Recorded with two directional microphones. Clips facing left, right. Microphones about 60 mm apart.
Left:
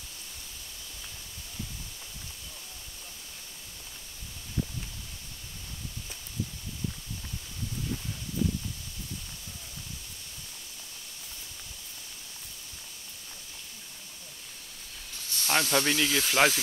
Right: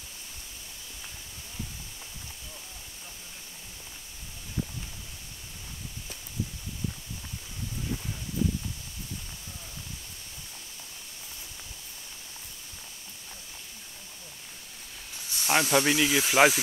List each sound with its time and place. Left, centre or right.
15.2 s speech: centre